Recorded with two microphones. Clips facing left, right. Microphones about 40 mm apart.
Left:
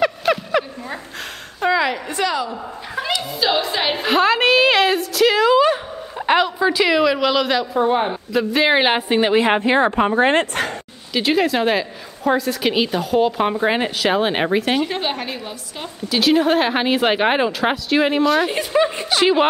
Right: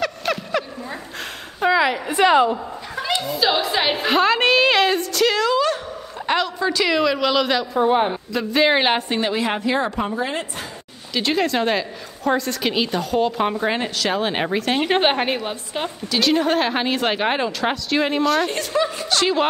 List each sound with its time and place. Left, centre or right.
0.2 s a sound: centre
1.6 s a sound: centre
2.2 s a woman's voice: right
3.2 s a woman's voice: centre; by 10.1 s left
10.1 s speech: left
11.1 s a woman's voice: centre
14.8 s a woman's voice: right
16.1 s a woman's voice: centre